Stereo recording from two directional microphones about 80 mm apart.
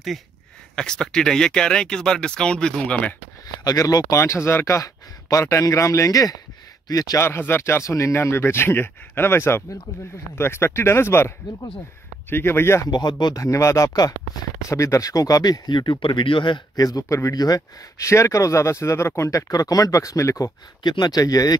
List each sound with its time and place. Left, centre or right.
0.7 s speech: centre
3.6 s speech: left
7.2 s speech: left
12.8 s speech: left
13.3 s speech: left
16.7 s speech: left
17.9 s speech: left
20.8 s speech: left